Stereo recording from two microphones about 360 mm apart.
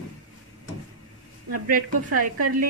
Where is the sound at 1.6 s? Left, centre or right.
Right.